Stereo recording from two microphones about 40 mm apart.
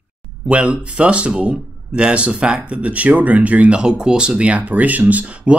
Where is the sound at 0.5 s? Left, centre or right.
Right.